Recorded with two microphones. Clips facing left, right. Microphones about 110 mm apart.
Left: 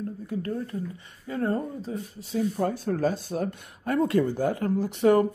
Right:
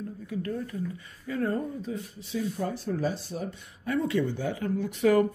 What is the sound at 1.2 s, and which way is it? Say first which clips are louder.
Speech: left 1 dB; 30° left (ahead or behind).